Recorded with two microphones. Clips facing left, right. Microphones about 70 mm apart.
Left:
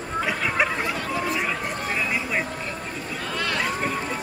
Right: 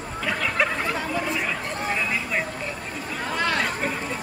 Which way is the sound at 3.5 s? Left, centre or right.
Centre.